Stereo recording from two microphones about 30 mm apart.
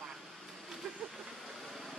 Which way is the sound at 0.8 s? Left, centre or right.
Centre.